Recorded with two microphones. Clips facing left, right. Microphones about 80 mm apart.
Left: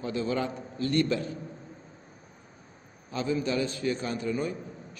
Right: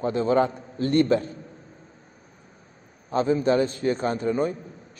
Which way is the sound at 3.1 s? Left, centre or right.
Right.